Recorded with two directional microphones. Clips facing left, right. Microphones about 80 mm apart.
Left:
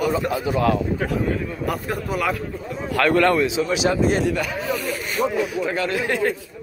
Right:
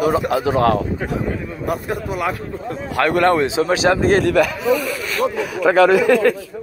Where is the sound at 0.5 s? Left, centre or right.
Right.